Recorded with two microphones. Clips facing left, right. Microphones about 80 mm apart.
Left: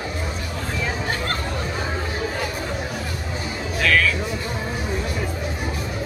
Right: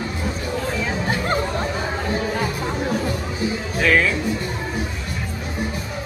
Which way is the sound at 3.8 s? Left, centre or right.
Centre.